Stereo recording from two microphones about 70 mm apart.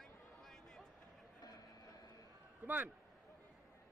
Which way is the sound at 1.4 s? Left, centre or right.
Left.